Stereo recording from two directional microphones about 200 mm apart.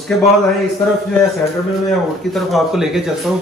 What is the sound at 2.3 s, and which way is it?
A man's voice, centre (ahead or behind).